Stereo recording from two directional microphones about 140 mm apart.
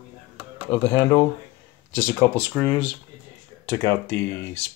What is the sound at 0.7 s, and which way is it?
Speech, 15° left (ahead or behind).